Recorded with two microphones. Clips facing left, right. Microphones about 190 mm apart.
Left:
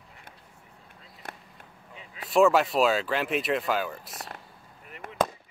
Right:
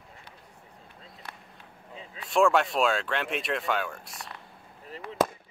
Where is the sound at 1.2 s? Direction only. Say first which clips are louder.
Left 4 dB; 50° left (ahead or behind).